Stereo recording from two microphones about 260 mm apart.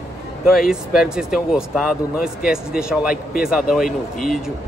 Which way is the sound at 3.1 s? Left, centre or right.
Left.